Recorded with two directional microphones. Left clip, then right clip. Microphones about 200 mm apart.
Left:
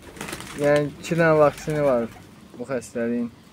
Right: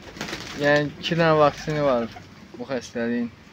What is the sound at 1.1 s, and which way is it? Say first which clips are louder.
Speech: left 1 dB; 10° left (ahead or behind).